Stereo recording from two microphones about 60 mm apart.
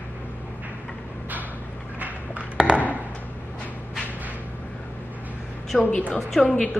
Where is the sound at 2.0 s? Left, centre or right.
Right.